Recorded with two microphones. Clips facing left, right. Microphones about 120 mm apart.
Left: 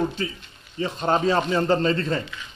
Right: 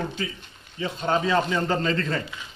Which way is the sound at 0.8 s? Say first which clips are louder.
Left 3 dB; 35° left (ahead or behind).